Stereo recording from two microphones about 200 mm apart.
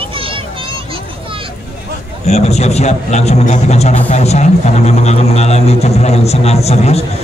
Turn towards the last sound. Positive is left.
turn(degrees=30)  # may be behind; listen again after turning